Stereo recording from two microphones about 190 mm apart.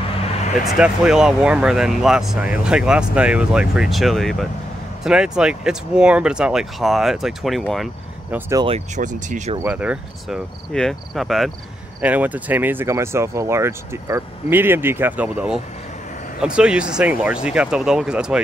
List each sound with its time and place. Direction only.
0.2 s vehicle: 30° left (ahead or behind)
0.7 s speech: 5° right (ahead or behind)
8.6 s speech: 35° right (ahead or behind)
9.6 s speech: 5° right (ahead or behind)